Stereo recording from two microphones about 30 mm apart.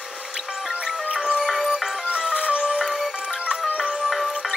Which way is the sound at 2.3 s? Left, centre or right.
Right.